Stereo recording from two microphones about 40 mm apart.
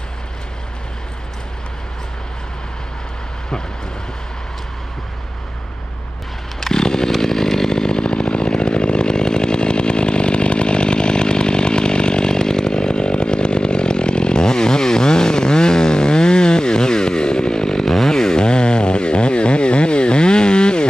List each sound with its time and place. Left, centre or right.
6.6 s chainsaw: centre